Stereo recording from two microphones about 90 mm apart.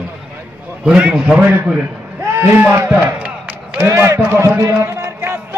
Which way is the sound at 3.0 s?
15° right (ahead or behind).